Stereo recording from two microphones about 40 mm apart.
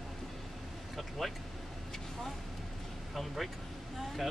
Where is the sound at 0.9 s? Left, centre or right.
Centre.